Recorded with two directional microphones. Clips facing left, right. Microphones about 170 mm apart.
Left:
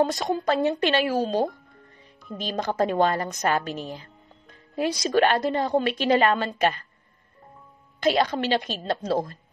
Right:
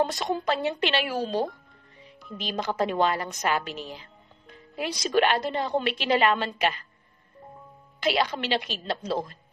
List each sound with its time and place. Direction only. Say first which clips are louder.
0.2 s a woman's voice: left 3 dB; 45° left (ahead or behind)
2.4 s a woman's voice: left 3 dB; 45° left (ahead or behind)
8.0 s a woman's voice: left 4 dB; 45° left (ahead or behind)